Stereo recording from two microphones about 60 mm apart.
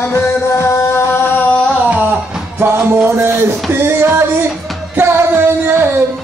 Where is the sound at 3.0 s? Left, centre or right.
Right.